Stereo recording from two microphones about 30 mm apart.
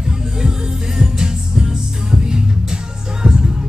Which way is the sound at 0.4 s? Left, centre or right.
Right.